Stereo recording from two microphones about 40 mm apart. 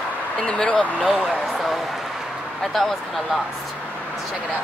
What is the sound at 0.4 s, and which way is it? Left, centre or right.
Speech, left.